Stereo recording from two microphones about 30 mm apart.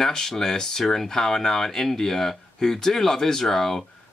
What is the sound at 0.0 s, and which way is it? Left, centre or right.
Speech, centre.